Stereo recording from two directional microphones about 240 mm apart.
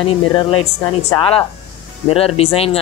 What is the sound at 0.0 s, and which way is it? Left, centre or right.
Speech, left.